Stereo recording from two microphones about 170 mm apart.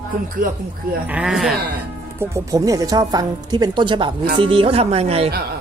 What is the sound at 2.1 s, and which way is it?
Speech, 20° right (ahead or behind).